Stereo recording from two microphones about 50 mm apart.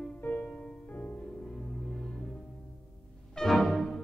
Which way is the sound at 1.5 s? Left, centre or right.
Centre.